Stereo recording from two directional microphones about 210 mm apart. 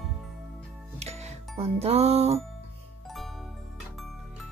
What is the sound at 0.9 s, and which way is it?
Music, 30° right (ahead or behind).